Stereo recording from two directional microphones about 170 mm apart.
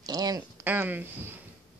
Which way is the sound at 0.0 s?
20° right (ahead or behind).